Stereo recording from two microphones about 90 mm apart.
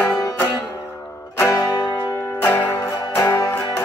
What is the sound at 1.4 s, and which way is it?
Music, 35° left (ahead or behind).